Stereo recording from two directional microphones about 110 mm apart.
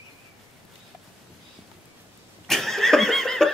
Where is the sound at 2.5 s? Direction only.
Centre (ahead or behind).